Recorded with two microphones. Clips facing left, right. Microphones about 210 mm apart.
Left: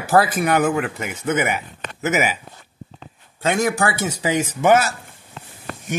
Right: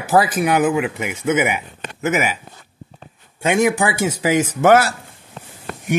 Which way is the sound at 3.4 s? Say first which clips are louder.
Right 3 dB; 15° right (ahead or behind).